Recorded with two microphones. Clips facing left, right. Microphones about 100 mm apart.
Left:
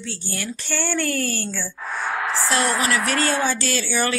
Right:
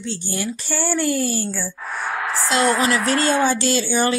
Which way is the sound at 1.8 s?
Centre (ahead or behind).